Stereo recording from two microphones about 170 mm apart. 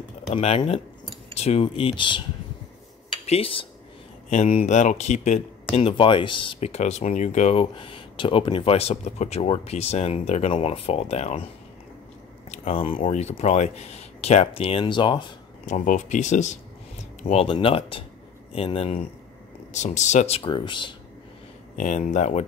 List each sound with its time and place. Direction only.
0.3 s speech: 40° left (ahead or behind)
3.3 s speech: 35° left (ahead or behind)
5.8 s speech: 35° left (ahead or behind)
12.4 s speech: 35° left (ahead or behind)
15.6 s speech: 50° left (ahead or behind)
20.4 s speech: 30° left (ahead or behind)
21.7 s speech: 45° left (ahead or behind)